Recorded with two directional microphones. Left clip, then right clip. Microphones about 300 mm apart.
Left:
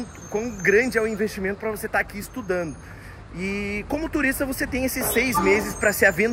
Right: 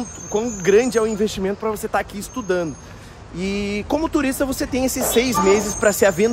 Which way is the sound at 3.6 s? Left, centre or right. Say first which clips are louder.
Right 7 dB; right.